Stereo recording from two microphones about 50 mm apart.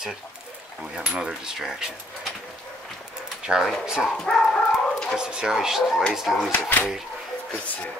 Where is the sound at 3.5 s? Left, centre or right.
Right.